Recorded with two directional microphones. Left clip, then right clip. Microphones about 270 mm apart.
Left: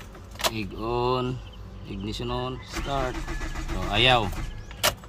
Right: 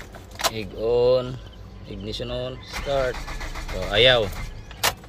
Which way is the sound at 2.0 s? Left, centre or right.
Centre.